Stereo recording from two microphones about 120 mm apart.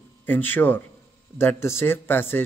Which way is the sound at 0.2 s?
15° left (ahead or behind).